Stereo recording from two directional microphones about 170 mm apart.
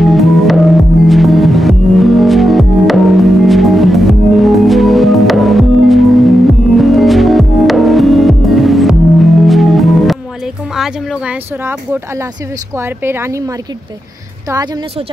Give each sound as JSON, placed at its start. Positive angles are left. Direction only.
{"t": 0.0, "sound": "music", "side_deg": 0}
{"t": 12.7, "sound": "a woman's voice", "side_deg": -15}